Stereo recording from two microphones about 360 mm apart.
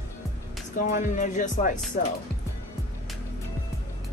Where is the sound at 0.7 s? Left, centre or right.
Left.